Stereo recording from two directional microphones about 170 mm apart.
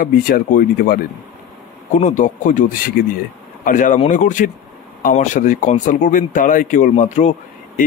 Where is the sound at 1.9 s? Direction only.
45° left (ahead or behind).